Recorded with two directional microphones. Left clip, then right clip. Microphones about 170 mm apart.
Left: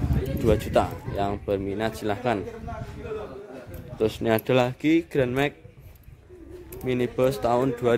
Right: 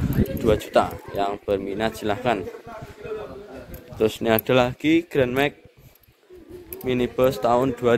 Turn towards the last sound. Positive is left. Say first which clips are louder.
# right 3 dB
turn(degrees=5)  # may be behind; listen again after turning